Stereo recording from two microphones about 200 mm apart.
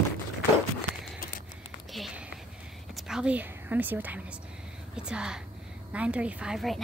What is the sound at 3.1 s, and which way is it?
A woman's voice, 5° right (ahead or behind).